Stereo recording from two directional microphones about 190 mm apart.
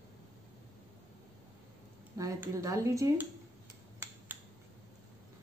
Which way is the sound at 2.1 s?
15° right (ahead or behind).